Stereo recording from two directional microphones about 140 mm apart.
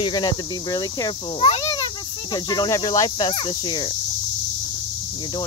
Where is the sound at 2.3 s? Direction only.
30° left (ahead or behind).